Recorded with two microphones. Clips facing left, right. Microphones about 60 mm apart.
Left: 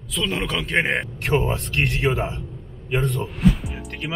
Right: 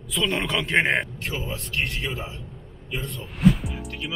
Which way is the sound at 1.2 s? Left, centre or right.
Left.